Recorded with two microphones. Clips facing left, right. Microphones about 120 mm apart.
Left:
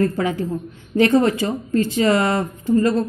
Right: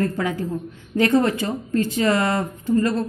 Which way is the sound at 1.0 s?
15° left (ahead or behind).